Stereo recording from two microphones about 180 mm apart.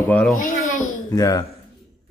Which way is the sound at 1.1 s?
20° left (ahead or behind).